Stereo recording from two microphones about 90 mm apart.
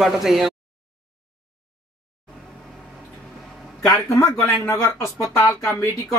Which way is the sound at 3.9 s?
30° left (ahead or behind).